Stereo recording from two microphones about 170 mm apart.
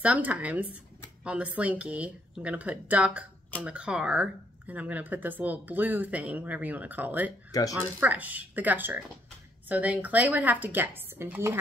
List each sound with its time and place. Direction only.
0.0 s speech: 10° right (ahead or behind)
7.5 s speech: 20° left (ahead or behind)
8.0 s speech: 10° right (ahead or behind)